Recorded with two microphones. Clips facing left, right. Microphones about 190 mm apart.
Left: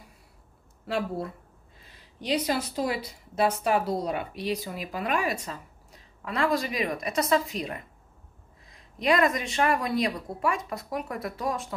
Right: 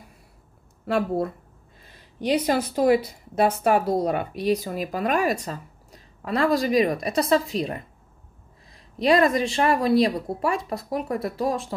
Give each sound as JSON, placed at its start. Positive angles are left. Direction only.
{"t": 0.8, "sound": "a woman's voice", "side_deg": -50}